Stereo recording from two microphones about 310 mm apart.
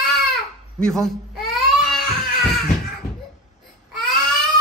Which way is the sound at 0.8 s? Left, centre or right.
Centre.